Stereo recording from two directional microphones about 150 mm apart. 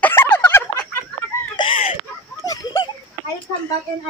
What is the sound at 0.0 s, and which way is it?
Turkey, 15° left (ahead or behind).